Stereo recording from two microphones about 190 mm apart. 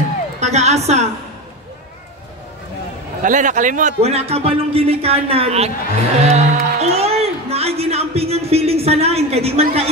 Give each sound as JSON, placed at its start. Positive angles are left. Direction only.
{"t": 0.4, "sound": "a woman's voice", "side_deg": -35}
{"t": 3.2, "sound": "a man's voice", "side_deg": -45}
{"t": 6.1, "sound": "music", "side_deg": -35}